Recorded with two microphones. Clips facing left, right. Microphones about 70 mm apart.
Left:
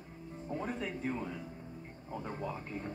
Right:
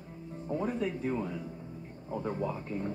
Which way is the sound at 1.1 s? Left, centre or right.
Right.